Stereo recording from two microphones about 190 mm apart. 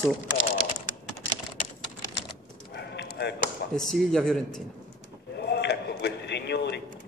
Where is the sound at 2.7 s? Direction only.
60° left (ahead or behind).